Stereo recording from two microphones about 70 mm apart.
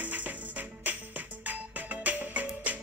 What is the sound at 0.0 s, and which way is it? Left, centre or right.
Music, right.